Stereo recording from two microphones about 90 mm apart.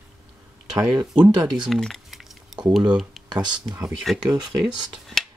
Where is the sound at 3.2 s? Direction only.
55° right (ahead or behind).